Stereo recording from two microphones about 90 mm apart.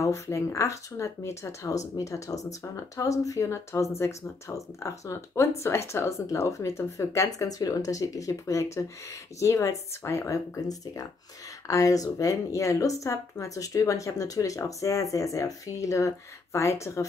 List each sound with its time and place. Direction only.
0.0 s speech: 35° left (ahead or behind)